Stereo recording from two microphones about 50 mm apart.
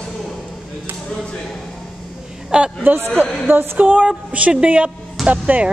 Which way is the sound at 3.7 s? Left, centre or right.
Right.